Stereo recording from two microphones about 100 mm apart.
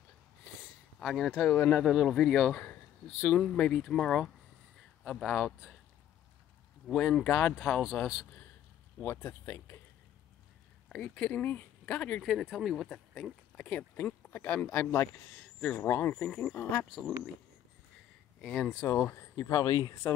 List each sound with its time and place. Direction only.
0.9 s speech: centre (ahead or behind)
2.6 s speech: 15° left (ahead or behind)
6.9 s speech: 10° left (ahead or behind)
9.0 s speech: 25° left (ahead or behind)
10.9 s speech: 15° left (ahead or behind)
12.3 s speech: centre (ahead or behind); by 16.3 s 20° left (ahead or behind)
16.3 s speech: 10° left (ahead or behind)
18.4 s speech: 10° left (ahead or behind)
18.9 s speech: 25° left (ahead or behind)